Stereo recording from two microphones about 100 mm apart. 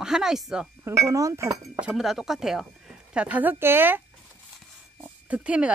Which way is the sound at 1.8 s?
5° right (ahead or behind).